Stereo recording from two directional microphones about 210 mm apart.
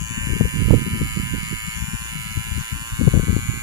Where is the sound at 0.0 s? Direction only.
15° right (ahead or behind).